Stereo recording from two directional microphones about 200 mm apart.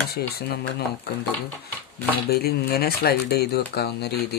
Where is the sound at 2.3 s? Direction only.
50° left (ahead or behind).